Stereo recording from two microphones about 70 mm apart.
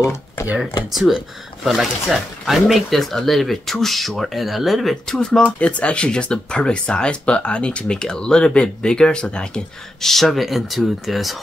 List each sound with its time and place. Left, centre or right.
0.0 s speech: left
0.9 s speech: centre
5.6 s speech: centre